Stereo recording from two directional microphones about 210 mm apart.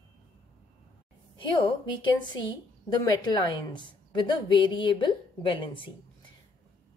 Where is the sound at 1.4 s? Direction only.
25° left (ahead or behind).